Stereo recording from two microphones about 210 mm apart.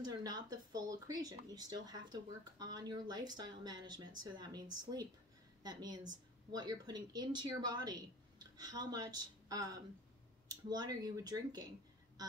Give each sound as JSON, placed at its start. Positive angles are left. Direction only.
{"t": 0.0, "sound": "a woman's voice", "side_deg": -20}